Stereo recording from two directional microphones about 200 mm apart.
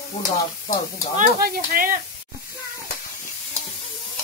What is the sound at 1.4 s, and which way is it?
Speech, 45° right (ahead or behind).